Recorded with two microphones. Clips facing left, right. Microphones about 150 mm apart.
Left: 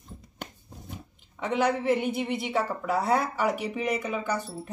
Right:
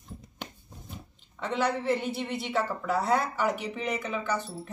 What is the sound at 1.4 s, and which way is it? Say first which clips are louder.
A woman's voice: left 3 dB; 15° left (ahead or behind).